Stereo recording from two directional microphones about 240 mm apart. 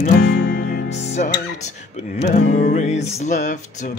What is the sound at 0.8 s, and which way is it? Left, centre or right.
Music, left.